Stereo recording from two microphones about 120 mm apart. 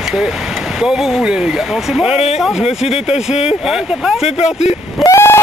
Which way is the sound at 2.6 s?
60° left (ahead or behind).